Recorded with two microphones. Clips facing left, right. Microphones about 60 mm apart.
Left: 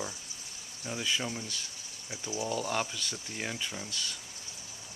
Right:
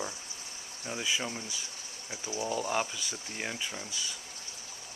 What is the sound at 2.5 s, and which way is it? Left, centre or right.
Speech, centre.